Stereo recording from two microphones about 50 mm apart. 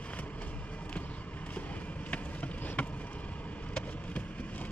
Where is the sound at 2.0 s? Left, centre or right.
Left.